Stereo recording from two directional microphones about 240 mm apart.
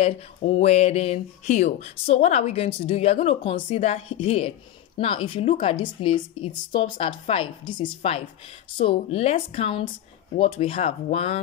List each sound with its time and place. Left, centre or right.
0.0 s speech: left